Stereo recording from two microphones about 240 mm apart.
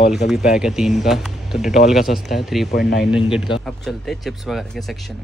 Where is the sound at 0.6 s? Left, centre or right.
Centre.